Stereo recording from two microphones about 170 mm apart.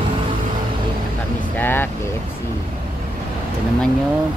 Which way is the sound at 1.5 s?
10° left (ahead or behind).